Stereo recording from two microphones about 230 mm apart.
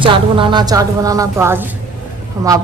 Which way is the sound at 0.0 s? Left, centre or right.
Right.